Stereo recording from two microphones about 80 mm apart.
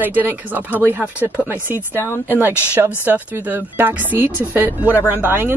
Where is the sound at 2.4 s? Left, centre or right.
Right.